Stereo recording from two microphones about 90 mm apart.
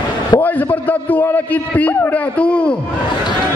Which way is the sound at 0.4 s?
20° left (ahead or behind).